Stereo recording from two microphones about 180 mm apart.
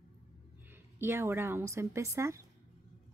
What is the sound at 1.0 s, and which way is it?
A woman's voice, 15° right (ahead or behind).